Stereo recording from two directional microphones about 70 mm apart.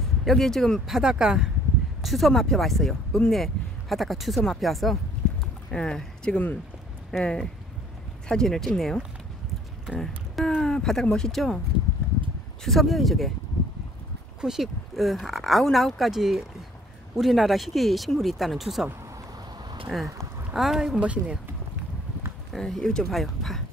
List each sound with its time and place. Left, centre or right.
0.2 s speech: centre
2.0 s speech: centre
5.7 s speech: centre
12.6 s speech: centre
14.4 s speech: centre
19.9 s speech: centre
21.0 s speech: centre
22.5 s speech: centre